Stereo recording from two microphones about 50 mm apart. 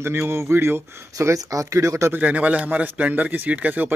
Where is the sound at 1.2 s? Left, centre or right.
Right.